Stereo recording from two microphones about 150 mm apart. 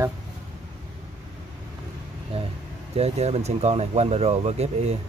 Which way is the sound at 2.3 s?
40° right (ahead or behind).